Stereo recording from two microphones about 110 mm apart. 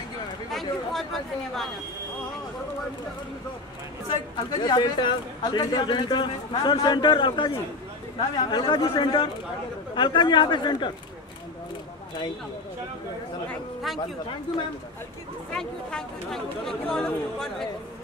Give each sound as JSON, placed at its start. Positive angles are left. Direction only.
{"t": 0.5, "sound": "speech", "side_deg": 0}
{"t": 4.1, "sound": "speech", "side_deg": 40}
{"t": 15.5, "sound": "speech", "side_deg": 5}